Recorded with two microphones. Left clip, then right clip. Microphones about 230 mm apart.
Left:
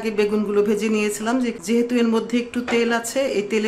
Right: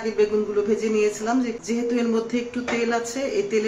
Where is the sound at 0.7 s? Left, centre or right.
Left.